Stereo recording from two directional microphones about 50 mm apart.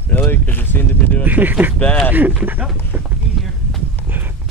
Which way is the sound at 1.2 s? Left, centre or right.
Right.